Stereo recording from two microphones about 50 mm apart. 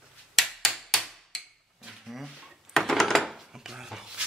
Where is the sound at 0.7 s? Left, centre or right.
Centre.